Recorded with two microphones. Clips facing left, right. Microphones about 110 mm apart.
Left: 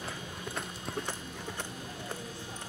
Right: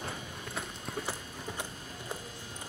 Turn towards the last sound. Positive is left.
turn(degrees=0)  # may be behind; listen again after turning